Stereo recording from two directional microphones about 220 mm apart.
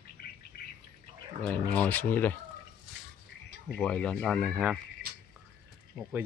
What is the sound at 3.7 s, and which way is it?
Speech, 5° left (ahead or behind).